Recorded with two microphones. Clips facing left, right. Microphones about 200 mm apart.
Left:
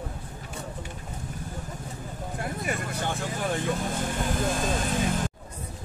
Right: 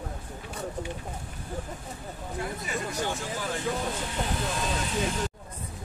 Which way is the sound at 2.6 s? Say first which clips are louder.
Left 2 dB; 55° left (ahead or behind).